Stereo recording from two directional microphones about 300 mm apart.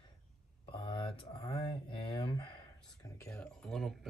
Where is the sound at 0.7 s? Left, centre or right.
Centre.